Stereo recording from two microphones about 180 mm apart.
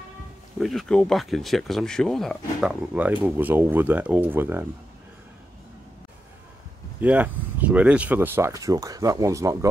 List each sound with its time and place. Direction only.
0.6 s speech: centre (ahead or behind)
7.0 s speech: 10° right (ahead or behind)